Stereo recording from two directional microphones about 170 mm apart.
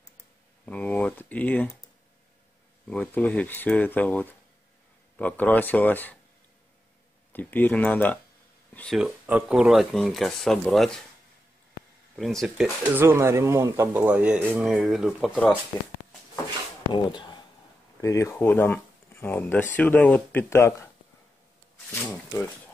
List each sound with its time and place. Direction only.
0.7 s speech: 10° left (ahead or behind)
2.9 s speech: 5° left (ahead or behind)
7.3 s speech: 10° left (ahead or behind)
8.9 s speech: 10° right (ahead or behind)
12.2 s speech: centre (ahead or behind)
12.9 s speech: 15° right (ahead or behind)
16.9 s speech: 25° left (ahead or behind)
21.9 s speech: 10° left (ahead or behind)